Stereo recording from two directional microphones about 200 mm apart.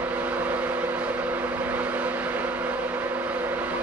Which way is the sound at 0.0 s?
5° right (ahead or behind).